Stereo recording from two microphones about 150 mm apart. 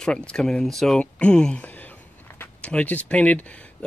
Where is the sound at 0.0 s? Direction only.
5° left (ahead or behind).